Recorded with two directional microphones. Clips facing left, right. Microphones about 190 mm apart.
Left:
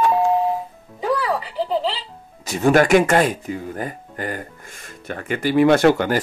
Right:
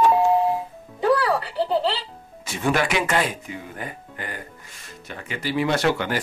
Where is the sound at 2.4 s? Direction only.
40° left (ahead or behind).